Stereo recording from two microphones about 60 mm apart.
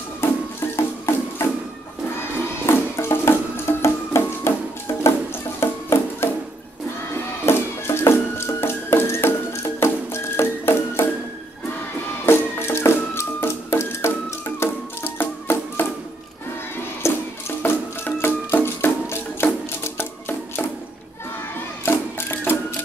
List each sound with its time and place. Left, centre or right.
0.2 s music: left
2.6 s music: left
7.4 s a sound: left
8.4 s music: left
12.3 s music: left
15.0 s music: left
17.0 s music: left
17.6 s music: left
21.8 s music: left